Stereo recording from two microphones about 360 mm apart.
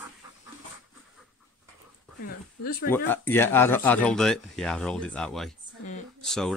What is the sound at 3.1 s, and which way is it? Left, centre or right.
Speech, centre.